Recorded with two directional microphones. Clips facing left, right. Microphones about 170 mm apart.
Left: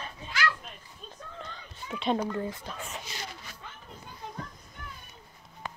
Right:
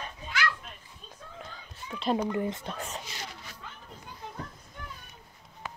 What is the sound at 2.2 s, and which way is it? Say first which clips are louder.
Speech: right 3 dB; 20° right (ahead or behind).